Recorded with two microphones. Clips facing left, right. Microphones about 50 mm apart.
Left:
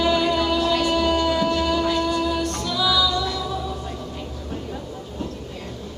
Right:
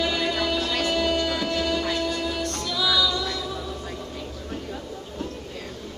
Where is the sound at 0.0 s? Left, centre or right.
Centre.